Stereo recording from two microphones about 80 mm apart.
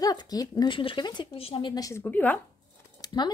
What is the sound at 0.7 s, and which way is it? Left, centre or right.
Speech, left.